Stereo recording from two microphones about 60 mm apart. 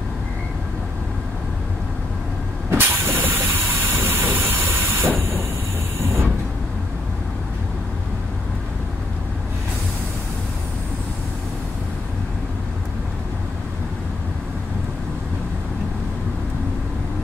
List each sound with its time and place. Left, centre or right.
2.7 s vehicle: right
3.1 s train: right